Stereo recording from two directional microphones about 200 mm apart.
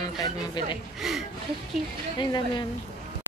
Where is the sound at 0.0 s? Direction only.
20° left (ahead or behind).